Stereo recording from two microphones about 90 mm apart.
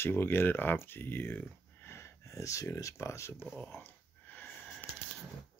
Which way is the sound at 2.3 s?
35° left (ahead or behind).